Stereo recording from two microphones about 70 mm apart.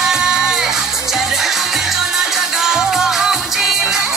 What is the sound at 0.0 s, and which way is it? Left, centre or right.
Music, centre.